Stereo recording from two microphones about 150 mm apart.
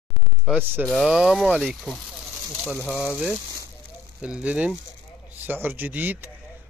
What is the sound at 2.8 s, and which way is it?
Speech, 15° left (ahead or behind).